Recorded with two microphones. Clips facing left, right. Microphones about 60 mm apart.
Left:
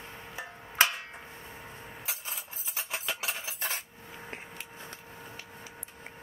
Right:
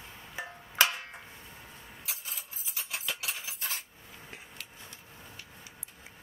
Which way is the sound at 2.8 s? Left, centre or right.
Left.